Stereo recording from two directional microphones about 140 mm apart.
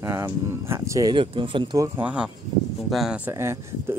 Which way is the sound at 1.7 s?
20° right (ahead or behind).